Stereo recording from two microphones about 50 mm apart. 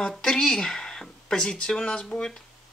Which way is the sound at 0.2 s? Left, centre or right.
Centre.